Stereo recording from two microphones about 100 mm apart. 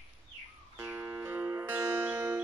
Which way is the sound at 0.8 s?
25° right (ahead or behind).